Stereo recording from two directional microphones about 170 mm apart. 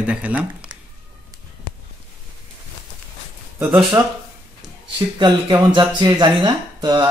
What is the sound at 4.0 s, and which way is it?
A man's voice, 15° right (ahead or behind).